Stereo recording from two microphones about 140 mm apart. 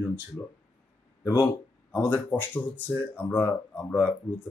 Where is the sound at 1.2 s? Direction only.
25° left (ahead or behind).